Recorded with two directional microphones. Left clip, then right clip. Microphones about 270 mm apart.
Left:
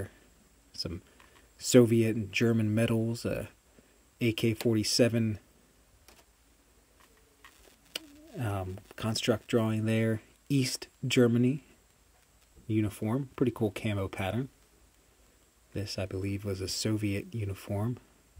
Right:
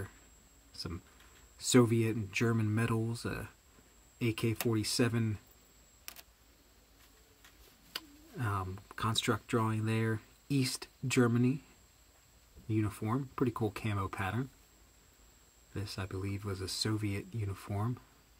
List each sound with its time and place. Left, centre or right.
1.7 s speech: centre
7.9 s a sound: centre
9.3 s speech: centre
12.6 s speech: centre
15.7 s speech: centre